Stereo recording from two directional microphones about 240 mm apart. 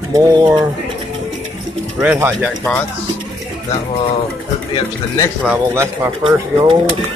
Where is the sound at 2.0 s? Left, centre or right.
Centre.